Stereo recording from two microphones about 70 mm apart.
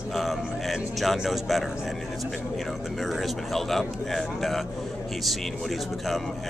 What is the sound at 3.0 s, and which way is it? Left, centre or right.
A man's voice, centre.